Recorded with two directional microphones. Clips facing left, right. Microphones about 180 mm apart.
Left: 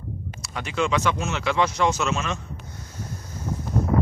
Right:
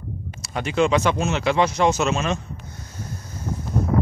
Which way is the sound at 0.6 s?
30° right (ahead or behind).